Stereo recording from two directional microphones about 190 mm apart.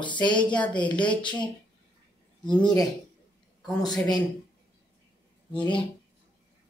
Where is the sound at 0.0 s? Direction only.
25° left (ahead or behind).